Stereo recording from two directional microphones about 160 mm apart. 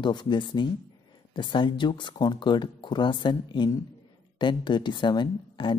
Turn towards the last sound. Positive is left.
turn(degrees=30)  # may be behind; listen again after turning